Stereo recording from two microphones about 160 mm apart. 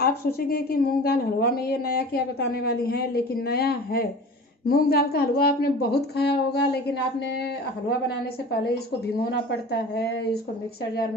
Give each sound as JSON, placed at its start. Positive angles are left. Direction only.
{"t": 0.0, "sound": "a woman's voice", "side_deg": 70}
{"t": 9.3, "sound": "speech", "side_deg": 90}